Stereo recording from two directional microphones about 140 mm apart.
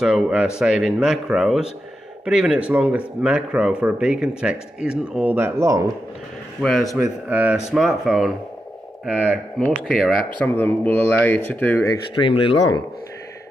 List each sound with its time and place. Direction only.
0.0 s speech: 5° right (ahead or behind)
6.6 s speech: centre (ahead or behind)
7.2 s speech: 10° right (ahead or behind)
9.8 s speech: centre (ahead or behind)
10.5 s speech: 15° left (ahead or behind)
12.2 s speech: 40° left (ahead or behind)